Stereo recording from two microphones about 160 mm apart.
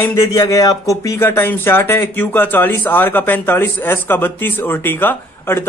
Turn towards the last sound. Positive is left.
turn(degrees=15)  # may be behind; listen again after turning